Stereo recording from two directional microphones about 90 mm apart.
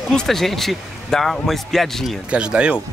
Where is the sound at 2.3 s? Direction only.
10° right (ahead or behind).